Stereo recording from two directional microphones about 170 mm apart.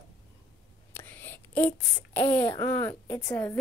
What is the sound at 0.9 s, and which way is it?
Whispering, 10° left (ahead or behind).